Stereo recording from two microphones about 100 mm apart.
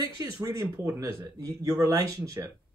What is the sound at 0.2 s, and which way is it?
A man's voice, 30° right (ahead or behind).